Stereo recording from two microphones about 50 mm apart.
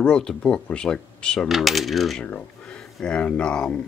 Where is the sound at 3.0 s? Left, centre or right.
Left.